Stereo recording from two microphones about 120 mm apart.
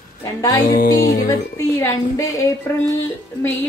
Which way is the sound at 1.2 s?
25° left (ahead or behind).